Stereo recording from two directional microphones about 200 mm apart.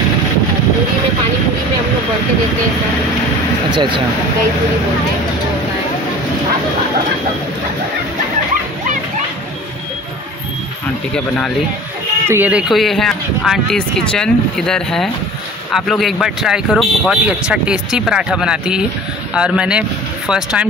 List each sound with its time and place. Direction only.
3.7 s speech: 25° right (ahead or behind)
11.1 s speech: 5° left (ahead or behind)
12.3 s speech: 10° right (ahead or behind)